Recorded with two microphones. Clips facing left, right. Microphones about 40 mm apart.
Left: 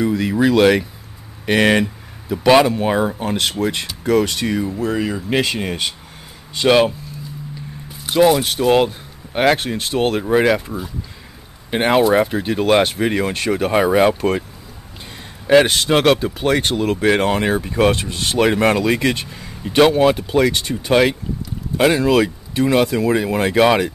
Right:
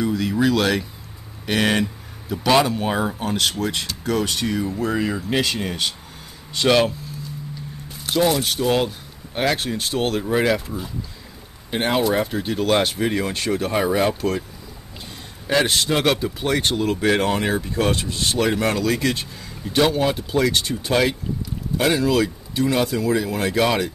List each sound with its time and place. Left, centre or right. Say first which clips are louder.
0.0 s speech: left 3 dB; centre
3.3 s speech: left 3 dB; left
4.6 s speech: left 2 dB; centre
5.3 s speech: left 6 dB; centre
8.0 s speech: left 6 dB; centre
11.7 s speech: left 5 dB; left
12.0 s speech: left 6 dB; centre
15.4 s speech: left 7 dB; left
16.8 s speech: left 4 dB; centre